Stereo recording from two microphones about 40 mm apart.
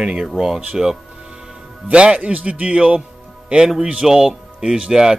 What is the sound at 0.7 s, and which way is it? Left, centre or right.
Music, centre.